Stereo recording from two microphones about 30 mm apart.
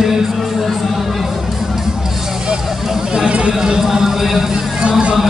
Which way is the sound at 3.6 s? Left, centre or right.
Centre.